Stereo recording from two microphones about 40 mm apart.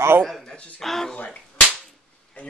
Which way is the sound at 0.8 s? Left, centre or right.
Centre.